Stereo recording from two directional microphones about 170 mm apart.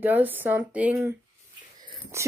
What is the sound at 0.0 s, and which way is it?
Speech, 10° right (ahead or behind).